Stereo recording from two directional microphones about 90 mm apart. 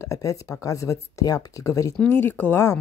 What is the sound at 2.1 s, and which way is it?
Speech, 25° left (ahead or behind).